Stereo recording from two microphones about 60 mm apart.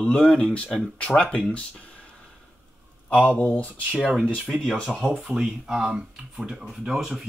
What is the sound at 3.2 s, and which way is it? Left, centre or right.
Speech, left.